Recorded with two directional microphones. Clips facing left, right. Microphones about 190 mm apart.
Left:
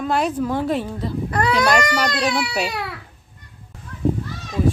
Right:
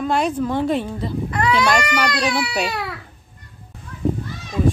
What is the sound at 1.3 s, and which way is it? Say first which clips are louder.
Baby cry: even; 40° left (ahead or behind).